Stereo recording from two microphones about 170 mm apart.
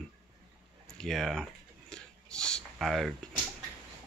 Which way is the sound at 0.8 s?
5° left (ahead or behind).